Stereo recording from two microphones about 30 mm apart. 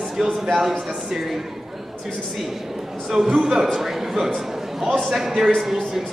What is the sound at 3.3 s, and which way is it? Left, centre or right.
Speech, right.